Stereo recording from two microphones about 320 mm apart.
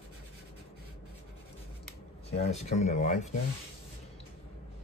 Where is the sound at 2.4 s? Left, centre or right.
Left.